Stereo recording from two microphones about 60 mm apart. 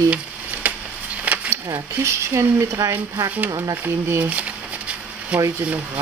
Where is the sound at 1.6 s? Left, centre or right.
Right.